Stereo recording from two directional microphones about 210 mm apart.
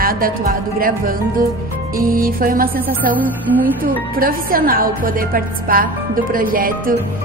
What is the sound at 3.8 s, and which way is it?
A woman's voice, 45° right (ahead or behind).